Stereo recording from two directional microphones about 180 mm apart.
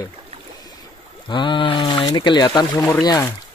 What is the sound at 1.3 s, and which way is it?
Speech, 25° left (ahead or behind).